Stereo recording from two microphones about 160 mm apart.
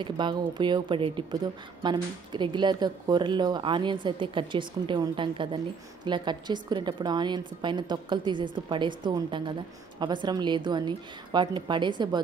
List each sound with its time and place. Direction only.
0.0 s a woman's voice: 30° right (ahead or behind)